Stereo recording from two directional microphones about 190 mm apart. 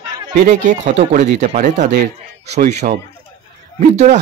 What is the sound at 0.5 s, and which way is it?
A man's voice, 40° right (ahead or behind).